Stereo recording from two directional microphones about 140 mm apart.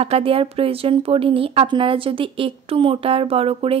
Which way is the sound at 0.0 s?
45° right (ahead or behind).